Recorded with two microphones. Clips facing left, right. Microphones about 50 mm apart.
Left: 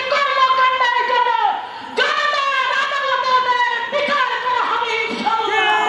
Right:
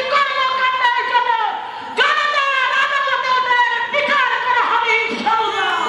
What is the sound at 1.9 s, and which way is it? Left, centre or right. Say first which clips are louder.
Shofar: right 2 dB; centre.